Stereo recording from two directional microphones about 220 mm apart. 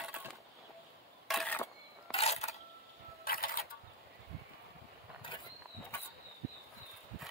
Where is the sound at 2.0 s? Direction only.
25° left (ahead or behind).